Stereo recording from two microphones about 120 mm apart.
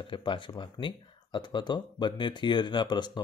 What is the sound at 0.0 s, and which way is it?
Speech, 45° left (ahead or behind).